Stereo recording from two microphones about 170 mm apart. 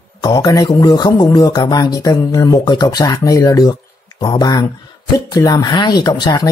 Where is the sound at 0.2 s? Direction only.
25° left (ahead or behind).